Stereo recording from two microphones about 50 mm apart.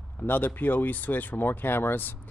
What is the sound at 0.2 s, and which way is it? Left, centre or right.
Speech, left.